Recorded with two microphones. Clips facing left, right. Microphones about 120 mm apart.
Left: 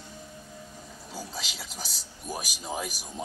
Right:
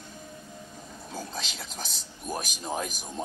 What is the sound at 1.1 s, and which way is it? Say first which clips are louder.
Speech: right 2 dB; 5° left (ahead or behind).